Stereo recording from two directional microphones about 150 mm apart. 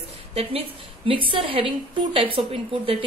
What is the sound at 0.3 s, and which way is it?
A woman's voice, 40° right (ahead or behind).